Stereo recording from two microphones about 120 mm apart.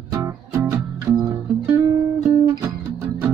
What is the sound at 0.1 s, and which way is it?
Music, 20° right (ahead or behind).